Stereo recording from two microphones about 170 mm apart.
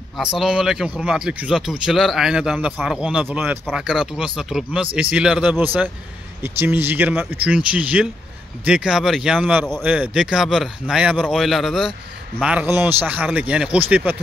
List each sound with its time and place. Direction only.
0.2 s a man's voice: 5° right (ahead or behind)